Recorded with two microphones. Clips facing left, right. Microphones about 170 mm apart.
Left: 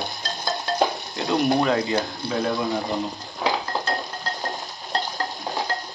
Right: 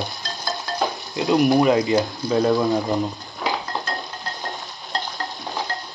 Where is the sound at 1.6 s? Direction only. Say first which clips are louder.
Right 4 dB; 20° right (ahead or behind).